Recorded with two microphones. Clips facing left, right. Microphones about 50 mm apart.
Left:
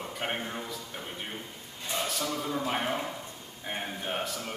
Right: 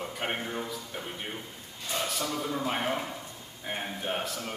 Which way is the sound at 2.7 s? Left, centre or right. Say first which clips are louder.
Even; centre.